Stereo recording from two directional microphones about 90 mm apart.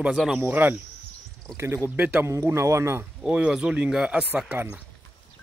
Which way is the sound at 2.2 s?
30° right (ahead or behind).